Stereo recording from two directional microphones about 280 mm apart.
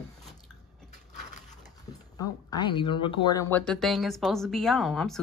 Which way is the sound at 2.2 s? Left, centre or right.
Centre.